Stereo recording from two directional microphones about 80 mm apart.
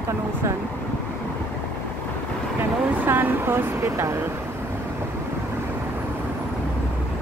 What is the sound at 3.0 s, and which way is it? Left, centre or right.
Speech, right.